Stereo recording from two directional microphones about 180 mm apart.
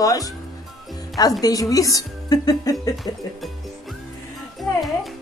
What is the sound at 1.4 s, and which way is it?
Speech, 20° left (ahead or behind).